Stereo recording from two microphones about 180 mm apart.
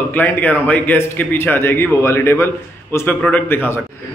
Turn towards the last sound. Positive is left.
turn(degrees=10)  # may be behind; listen again after turning